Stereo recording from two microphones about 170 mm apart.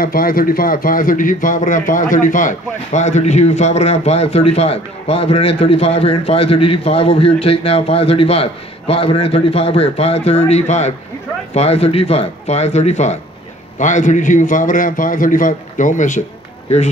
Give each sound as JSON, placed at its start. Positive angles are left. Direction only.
{"t": 0.0, "sound": "a man's voice", "side_deg": 60}